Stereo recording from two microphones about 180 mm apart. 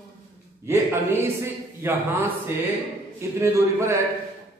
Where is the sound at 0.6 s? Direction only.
15° right (ahead or behind).